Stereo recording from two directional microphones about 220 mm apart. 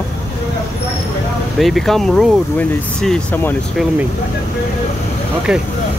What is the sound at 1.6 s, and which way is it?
Speech, centre (ahead or behind).